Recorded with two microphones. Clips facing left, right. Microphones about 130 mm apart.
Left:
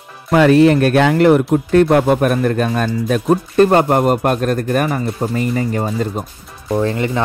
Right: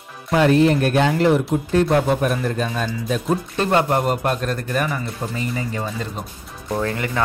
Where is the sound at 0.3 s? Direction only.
80° left; by 6.2 s 45° left (ahead or behind).